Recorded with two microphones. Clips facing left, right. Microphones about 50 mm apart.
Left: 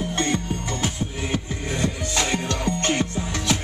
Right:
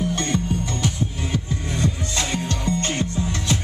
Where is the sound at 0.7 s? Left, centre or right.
Left.